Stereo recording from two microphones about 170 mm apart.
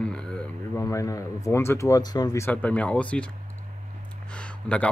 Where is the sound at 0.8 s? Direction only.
20° left (ahead or behind).